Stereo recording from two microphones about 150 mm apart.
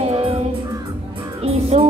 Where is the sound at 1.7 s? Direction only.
45° right (ahead or behind).